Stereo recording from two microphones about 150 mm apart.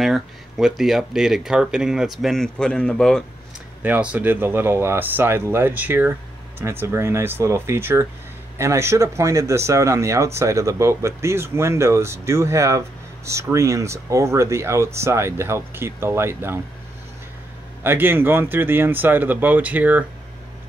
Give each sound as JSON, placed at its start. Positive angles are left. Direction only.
{"t": 0.0, "sound": "speech", "side_deg": 0}
{"t": 3.8, "sound": "speech", "side_deg": -10}
{"t": 17.8, "sound": "speech", "side_deg": -15}